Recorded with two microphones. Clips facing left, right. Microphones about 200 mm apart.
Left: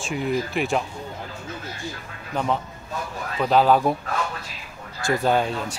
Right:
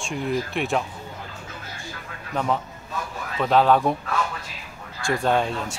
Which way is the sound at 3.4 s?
Centre (ahead or behind).